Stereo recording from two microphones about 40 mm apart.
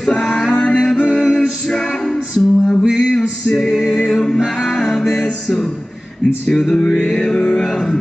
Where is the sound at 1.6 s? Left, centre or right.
Centre.